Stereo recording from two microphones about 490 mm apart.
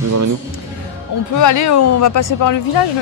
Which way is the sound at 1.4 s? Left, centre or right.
Left.